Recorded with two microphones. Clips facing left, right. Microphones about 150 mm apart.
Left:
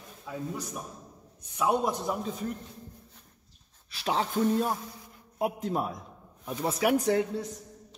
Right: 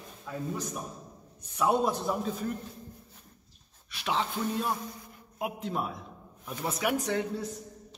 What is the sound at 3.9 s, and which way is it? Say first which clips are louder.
Speech: left 2 dB; 35° left (ahead or behind).